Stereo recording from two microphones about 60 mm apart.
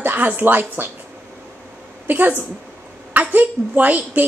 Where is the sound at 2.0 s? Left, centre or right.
Right.